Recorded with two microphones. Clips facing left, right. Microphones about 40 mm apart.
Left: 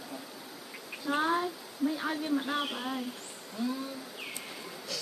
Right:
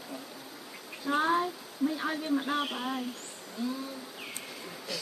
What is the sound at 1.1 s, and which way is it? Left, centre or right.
Speech, centre.